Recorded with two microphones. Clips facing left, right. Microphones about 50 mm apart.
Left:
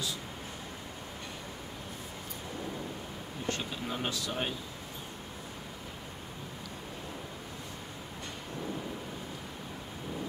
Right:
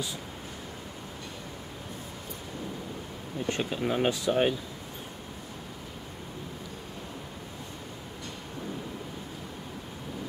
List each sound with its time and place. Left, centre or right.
3.4 s speech: right